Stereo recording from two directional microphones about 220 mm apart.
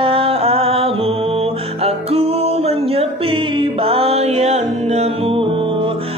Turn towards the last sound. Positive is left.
turn(degrees=-25)  # may be behind; listen again after turning